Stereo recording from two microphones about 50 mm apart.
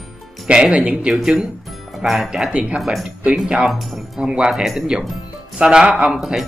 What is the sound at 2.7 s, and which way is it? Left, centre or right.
Speech, centre.